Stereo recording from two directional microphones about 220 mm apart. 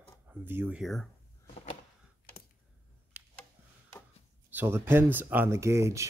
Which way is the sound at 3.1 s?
10° right (ahead or behind).